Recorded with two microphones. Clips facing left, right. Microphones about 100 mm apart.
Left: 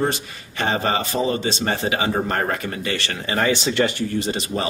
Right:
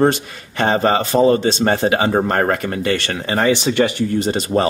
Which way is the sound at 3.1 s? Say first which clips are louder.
Right 4 dB; 35° right (ahead or behind).